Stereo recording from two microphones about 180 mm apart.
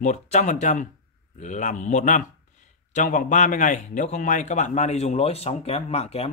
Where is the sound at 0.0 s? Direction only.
40° left (ahead or behind).